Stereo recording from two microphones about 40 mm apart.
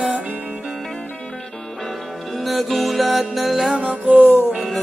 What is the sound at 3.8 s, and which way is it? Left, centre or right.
Music, right.